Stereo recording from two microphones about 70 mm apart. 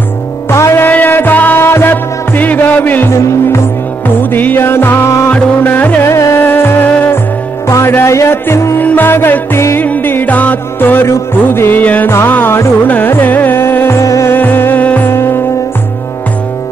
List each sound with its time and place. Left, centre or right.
0.5 s music: left
0.8 s music: left
3.1 s music: left
4.2 s music: left
6.0 s music: left
8.7 s music: left
12.3 s carnatic music: left
14.3 s music: left
15.0 s music: left